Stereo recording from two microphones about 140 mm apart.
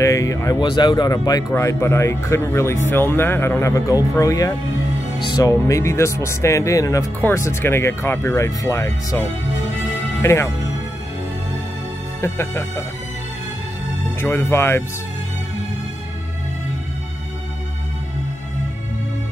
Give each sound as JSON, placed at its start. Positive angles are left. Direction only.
{"t": 0.0, "sound": "speech", "side_deg": 25}
{"t": 10.2, "sound": "speech", "side_deg": 20}
{"t": 12.2, "sound": "speech", "side_deg": 20}
{"t": 14.2, "sound": "speech", "side_deg": 15}